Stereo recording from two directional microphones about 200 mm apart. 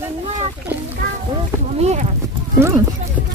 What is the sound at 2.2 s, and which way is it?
Horse, 15° right (ahead or behind).